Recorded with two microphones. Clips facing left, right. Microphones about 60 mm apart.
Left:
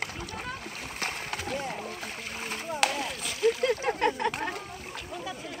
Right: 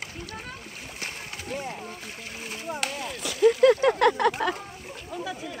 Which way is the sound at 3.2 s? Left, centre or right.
Right.